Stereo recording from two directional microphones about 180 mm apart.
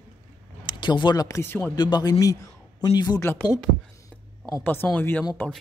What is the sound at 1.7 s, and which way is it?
A man's voice, 25° left (ahead or behind).